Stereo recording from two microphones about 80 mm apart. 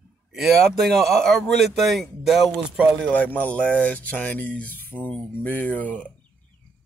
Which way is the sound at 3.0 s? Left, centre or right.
Centre.